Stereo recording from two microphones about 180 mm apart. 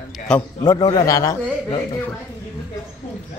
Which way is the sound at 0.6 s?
20° left (ahead or behind).